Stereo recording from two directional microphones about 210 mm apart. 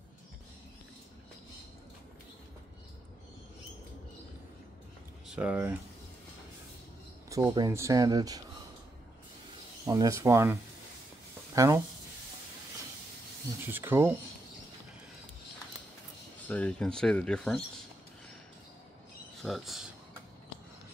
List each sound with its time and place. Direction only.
5.3 s speech: 5° right (ahead or behind)
7.2 s speech: 15° right (ahead or behind)
9.8 s speech: 15° right (ahead or behind)
13.7 s speech: 10° right (ahead or behind)
16.4 s speech: 5° left (ahead or behind)
19.4 s speech: centre (ahead or behind)